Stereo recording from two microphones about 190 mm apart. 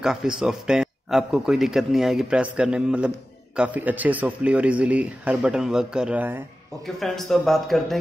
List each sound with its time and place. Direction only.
0.0 s a man's voice: 5° right (ahead or behind)